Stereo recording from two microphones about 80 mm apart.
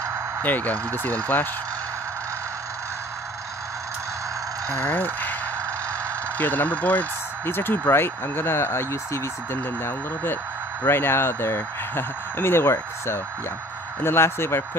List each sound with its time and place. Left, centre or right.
0.4 s speech: left
4.8 s speech: left
6.3 s speech: left